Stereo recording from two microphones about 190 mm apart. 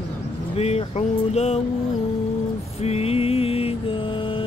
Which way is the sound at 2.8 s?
30° left (ahead or behind).